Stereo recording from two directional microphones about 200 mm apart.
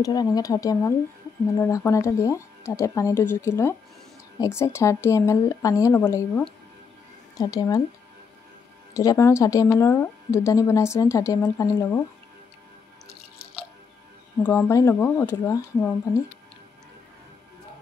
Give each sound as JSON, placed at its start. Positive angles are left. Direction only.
{"t": 0.0, "sound": "speech", "side_deg": 20}
{"t": 8.9, "sound": "speech", "side_deg": 15}
{"t": 14.4, "sound": "speech", "side_deg": 10}